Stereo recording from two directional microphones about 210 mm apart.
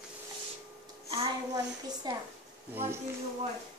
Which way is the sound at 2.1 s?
20° right (ahead or behind).